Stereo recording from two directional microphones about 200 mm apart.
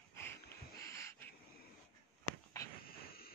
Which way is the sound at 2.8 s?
50° left (ahead or behind).